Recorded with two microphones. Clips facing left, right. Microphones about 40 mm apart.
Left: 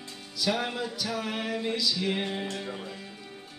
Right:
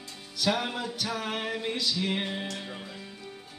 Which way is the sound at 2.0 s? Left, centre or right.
Centre.